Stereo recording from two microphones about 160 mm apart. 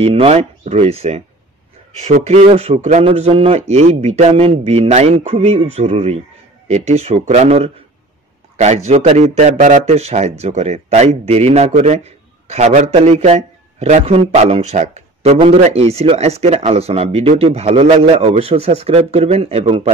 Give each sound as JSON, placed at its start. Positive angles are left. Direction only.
{"t": 0.0, "sound": "a man's voice", "side_deg": -40}